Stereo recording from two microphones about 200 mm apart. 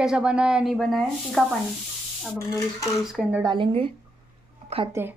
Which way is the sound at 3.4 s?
25° right (ahead or behind).